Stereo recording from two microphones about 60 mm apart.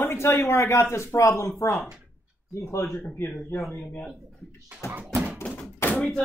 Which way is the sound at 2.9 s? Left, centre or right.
Left.